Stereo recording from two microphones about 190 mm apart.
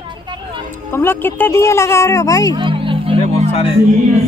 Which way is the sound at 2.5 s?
25° right (ahead or behind).